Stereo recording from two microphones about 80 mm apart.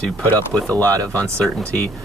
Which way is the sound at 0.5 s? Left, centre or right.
Centre.